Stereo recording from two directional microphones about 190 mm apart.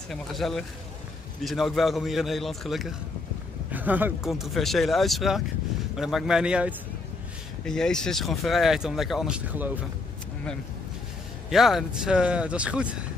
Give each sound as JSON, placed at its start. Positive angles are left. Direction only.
{"t": 0.1, "sound": "speech", "side_deg": 0}
{"t": 11.5, "sound": "speech", "side_deg": 0}